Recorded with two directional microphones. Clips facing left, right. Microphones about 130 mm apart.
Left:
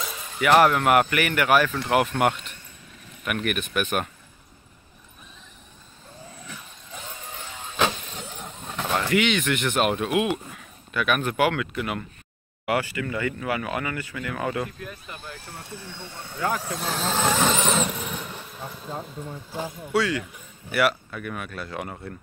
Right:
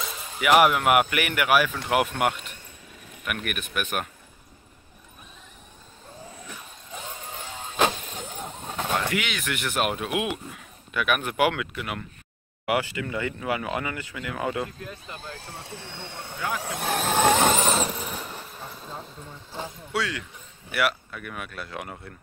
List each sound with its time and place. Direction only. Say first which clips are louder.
0.0 s a sound: left 1 dB; centre (ahead or behind)
0.4 s speech: left 1 dB; 10° right (ahead or behind)
7.7 s vehicle: right 1 dB; 5° right (ahead or behind)
8.5 s a sound: left 1 dB; 20° right (ahead or behind)
9.1 s speech: left 7 dB; 5° right (ahead or behind)
12.6 s speech: left 1 dB; 15° right (ahead or behind)
16.7 s vehicle: right 2 dB; 60° right (ahead or behind); by 17.9 s 35° right (ahead or behind)
17.9 s a sound: left 1 dB; centre (ahead or behind)
19.0 s speech: left 6 dB; 5° left (ahead or behind)